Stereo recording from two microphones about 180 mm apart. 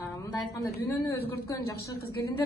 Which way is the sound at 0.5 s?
15° left (ahead or behind).